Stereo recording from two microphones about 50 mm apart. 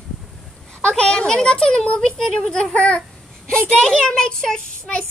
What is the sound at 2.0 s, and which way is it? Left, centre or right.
Speech, centre.